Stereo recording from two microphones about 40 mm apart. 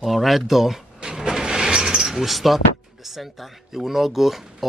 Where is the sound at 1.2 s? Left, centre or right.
Centre.